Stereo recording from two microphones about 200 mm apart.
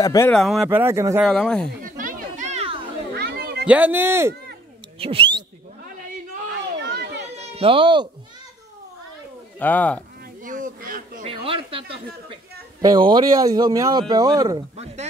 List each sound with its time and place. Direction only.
0.0 s speech: 15° left (ahead or behind)
0.3 s speech: centre (ahead or behind)
0.7 s speech: 10° right (ahead or behind)
1.2 s speech: 5° left (ahead or behind)
1.8 s a sound: 45° right (ahead or behind)
3.2 s children playing: 55° right (ahead or behind)
3.6 s speech: 10° right (ahead or behind)
4.9 s speech: 30° right (ahead or behind)
6.8 s a sound: 55° right (ahead or behind)
7.2 s cat: 30° right (ahead or behind)
9.6 s speech: 10° left (ahead or behind)
10.4 s speech: 40° right (ahead or behind)
11.2 s speech: 25° right (ahead or behind)